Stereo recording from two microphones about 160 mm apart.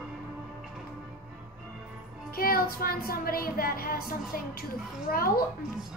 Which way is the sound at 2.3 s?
65° left (ahead or behind).